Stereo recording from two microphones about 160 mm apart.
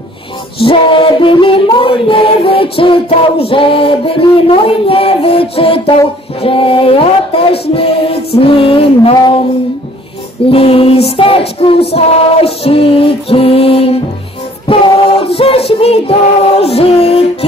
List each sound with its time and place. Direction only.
0.6 s music: 35° left (ahead or behind)
10.5 s music: 35° left (ahead or behind)
15.2 s music: 40° left (ahead or behind)